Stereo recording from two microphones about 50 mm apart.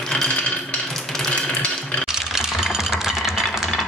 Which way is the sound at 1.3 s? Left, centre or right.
Left.